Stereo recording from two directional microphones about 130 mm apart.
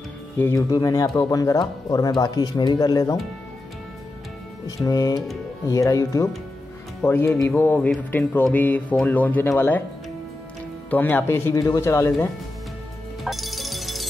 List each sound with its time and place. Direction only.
0.7 s speech: 25° left (ahead or behind)
4.6 s speech: 30° left (ahead or behind)
10.9 s speech: 15° left (ahead or behind)
13.2 s music: centre (ahead or behind)